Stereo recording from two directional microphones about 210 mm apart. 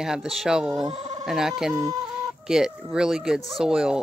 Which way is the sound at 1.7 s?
15° right (ahead or behind).